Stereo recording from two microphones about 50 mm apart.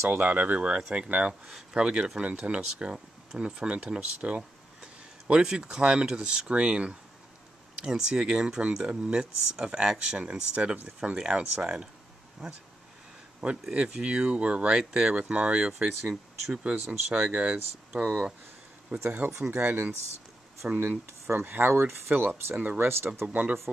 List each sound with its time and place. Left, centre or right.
0.1 s speech: right; by 11.9 s centre
13.4 s speech: right
14.8 s speech: centre; by 19.9 s right
21.4 s speech: right
23.3 s speech: right